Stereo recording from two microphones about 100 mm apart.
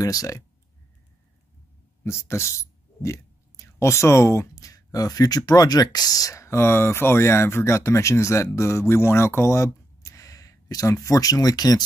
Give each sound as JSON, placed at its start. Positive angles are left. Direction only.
{"t": 0.0, "sound": "speech", "side_deg": 35}
{"t": 2.0, "sound": "speech", "side_deg": 25}